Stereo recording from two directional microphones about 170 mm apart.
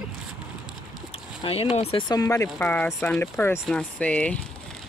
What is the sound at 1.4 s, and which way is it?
Speech, 30° left (ahead or behind).